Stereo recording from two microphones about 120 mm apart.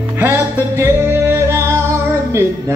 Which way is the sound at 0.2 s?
20° right (ahead or behind).